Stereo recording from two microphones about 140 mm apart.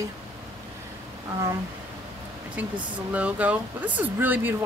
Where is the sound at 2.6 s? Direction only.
10° right (ahead or behind).